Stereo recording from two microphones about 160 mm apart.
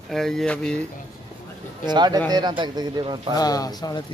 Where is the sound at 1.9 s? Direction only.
25° right (ahead or behind).